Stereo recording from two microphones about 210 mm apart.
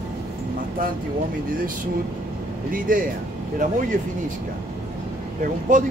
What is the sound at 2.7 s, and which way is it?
Speech, 40° right (ahead or behind).